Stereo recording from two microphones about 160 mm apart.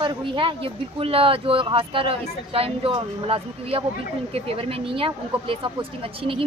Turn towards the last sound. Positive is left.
turn(degrees=-35)  # may be behind; listen again after turning